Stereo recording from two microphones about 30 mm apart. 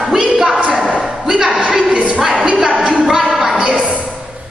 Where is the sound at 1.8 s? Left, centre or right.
Right.